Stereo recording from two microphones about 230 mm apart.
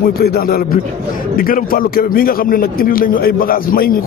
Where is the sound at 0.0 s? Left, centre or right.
Left.